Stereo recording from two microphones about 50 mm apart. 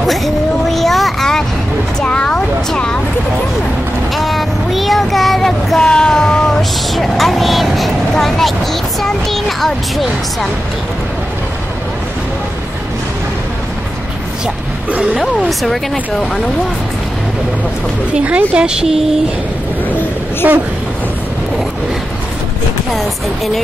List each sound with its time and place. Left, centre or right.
0.0 s a sound: centre
2.0 s a sound: left
4.1 s child singing: centre
5.8 s vehicle: centre
8.1 s a sound: centre
9.0 s music: centre
15.0 s speech: centre
18.1 s speech: right
20.4 s speech: right
22.9 s speech: centre